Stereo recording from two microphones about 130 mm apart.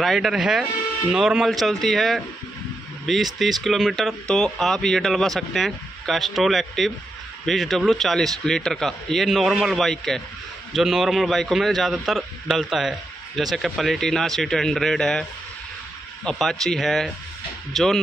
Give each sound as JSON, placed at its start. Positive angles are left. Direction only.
{"t": 0.0, "sound": "speech", "side_deg": 0}
{"t": 16.3, "sound": "speech", "side_deg": 0}